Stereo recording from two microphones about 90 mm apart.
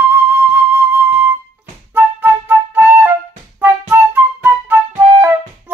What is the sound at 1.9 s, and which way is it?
Flute, 20° right (ahead or behind).